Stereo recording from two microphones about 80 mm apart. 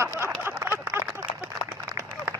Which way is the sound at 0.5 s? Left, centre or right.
Right.